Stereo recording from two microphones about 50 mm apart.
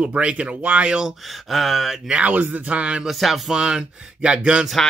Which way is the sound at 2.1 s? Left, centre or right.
Right.